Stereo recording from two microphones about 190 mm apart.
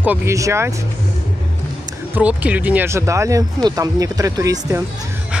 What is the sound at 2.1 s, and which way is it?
Speech, 10° right (ahead or behind).